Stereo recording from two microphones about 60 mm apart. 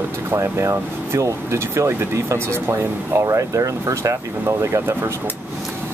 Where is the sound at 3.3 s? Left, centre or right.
Right.